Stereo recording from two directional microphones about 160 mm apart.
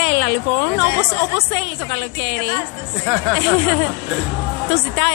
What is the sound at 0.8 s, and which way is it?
A woman's voice, 35° left (ahead or behind).